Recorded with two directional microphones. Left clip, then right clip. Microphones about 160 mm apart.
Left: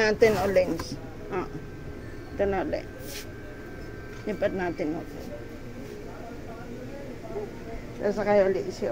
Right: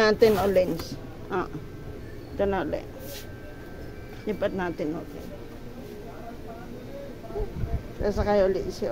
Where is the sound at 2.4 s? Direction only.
20° right (ahead or behind).